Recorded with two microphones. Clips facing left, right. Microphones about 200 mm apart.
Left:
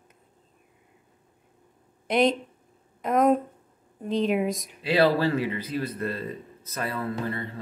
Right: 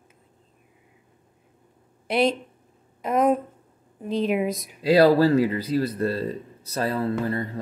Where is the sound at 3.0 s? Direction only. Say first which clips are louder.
Even; 5° right (ahead or behind).